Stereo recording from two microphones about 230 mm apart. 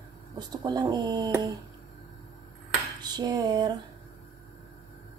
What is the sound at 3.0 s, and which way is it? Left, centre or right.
Speech, centre.